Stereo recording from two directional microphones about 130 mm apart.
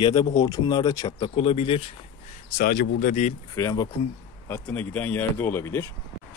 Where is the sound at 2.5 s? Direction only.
90° left.